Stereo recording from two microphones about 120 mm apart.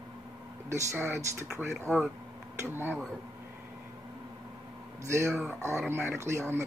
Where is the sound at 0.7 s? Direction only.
20° right (ahead or behind).